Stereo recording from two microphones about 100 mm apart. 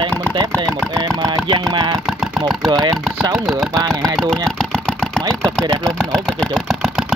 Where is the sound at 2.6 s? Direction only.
40° right (ahead or behind).